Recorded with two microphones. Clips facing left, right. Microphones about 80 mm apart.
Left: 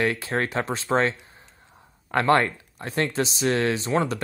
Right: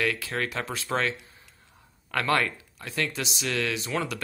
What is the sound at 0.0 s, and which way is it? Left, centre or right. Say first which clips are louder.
Speech: left 4 dB; left.